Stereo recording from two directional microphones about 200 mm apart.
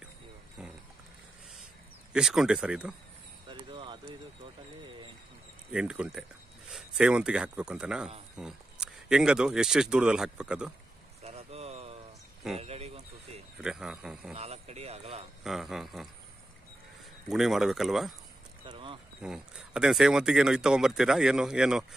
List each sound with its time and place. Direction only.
2.1 s speech: centre (ahead or behind)
3.4 s a sound: 25° right (ahead or behind)
5.7 s speech: 5° right (ahead or behind)
11.2 s vehicle: 30° right (ahead or behind)
12.5 s a sound: 30° right (ahead or behind)
13.6 s speech: 5° right (ahead or behind)
14.3 s speech: 30° right (ahead or behind)
15.4 s speech: centre (ahead or behind)
17.3 s speech: centre (ahead or behind)
18.7 s a sound: 25° right (ahead or behind)
19.2 s speech: 5° right (ahead or behind)